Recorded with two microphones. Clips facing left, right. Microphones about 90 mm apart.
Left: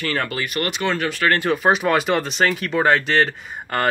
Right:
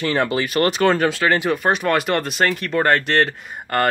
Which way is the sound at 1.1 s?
20° right (ahead or behind).